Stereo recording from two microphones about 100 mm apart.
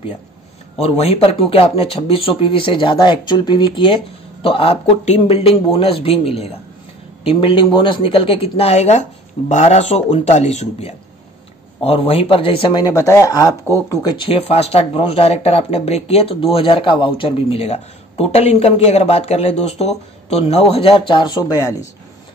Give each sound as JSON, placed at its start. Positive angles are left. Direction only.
{"t": 0.7, "sound": "speech", "side_deg": 90}
{"t": 5.7, "sound": "speech", "side_deg": 65}
{"t": 7.2, "sound": "speech", "side_deg": 60}
{"t": 11.8, "sound": "speech", "side_deg": 75}
{"t": 12.7, "sound": "speech", "side_deg": 35}
{"t": 14.1, "sound": "speech", "side_deg": 65}
{"t": 21.4, "sound": "speech", "side_deg": 40}